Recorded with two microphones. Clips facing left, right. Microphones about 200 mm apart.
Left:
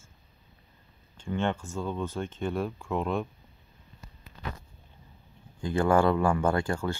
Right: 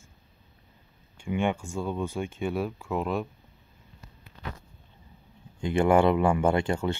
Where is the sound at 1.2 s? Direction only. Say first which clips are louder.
Right 2 dB; 10° right (ahead or behind).